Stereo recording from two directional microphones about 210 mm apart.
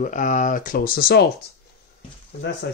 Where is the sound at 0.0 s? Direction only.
35° left (ahead or behind).